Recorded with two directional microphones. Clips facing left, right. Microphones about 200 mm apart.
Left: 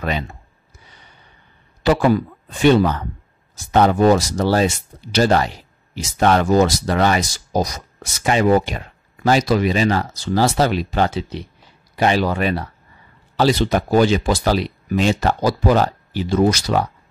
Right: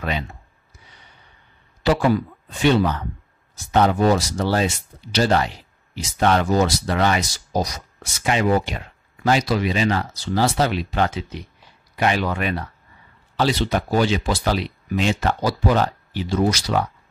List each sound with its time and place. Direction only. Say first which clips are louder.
1.8 s speech: left 3 dB; 50° left (ahead or behind)